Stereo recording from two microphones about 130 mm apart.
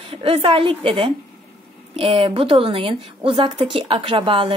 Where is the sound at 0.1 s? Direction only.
45° right (ahead or behind).